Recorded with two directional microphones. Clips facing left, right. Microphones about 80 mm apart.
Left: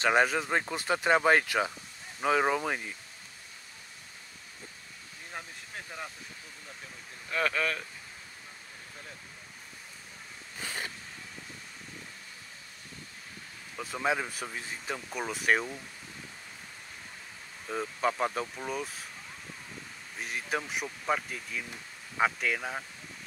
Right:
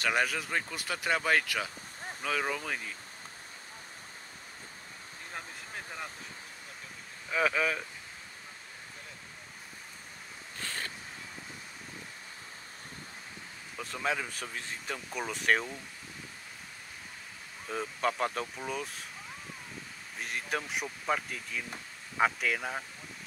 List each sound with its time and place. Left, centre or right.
0.0 s speech: left
7.2 s speech: centre
10.6 s a sound: centre
13.7 s speech: centre
17.6 s speech: centre
20.2 s speech: centre